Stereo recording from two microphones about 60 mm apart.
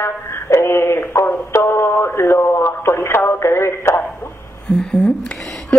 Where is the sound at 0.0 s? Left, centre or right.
Left.